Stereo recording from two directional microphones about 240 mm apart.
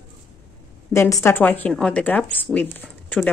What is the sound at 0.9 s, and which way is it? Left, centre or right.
A woman's voice, centre.